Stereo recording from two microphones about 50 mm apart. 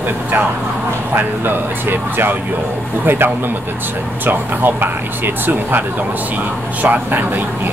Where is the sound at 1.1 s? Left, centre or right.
Right.